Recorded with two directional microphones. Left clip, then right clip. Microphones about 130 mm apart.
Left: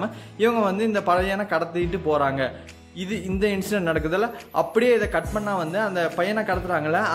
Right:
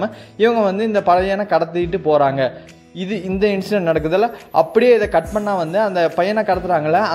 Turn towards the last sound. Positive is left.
turn(degrees=-35)  # may be behind; listen again after turning